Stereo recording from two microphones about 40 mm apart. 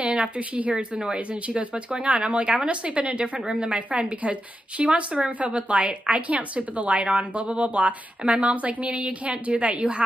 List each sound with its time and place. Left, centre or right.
0.0 s a sound: right
0.6 s speech: right
1.0 s speech: right
1.6 s speech: right